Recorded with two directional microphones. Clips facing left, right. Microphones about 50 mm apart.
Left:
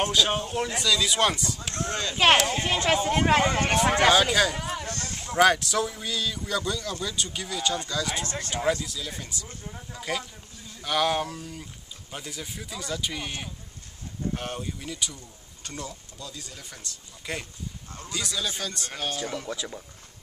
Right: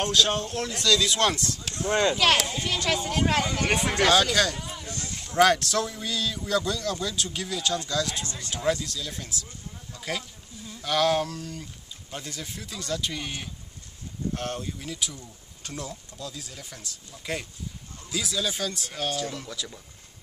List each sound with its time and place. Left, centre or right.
0.0 s speech: centre
1.9 s speech: right
2.6 s speech: left
4.1 s speech: centre
4.6 s a sound: left
5.1 s a sound: centre
5.4 s speech: centre
8.3 s speech: left
8.8 s speech: centre
9.9 s a sound: centre
10.8 s speech: centre
14.3 s speech: centre
19.4 s speech: left